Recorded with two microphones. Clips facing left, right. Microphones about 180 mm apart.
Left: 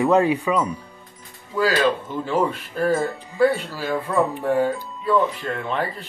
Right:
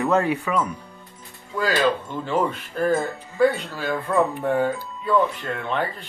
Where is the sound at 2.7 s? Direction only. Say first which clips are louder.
Left 1 dB; centre (ahead or behind).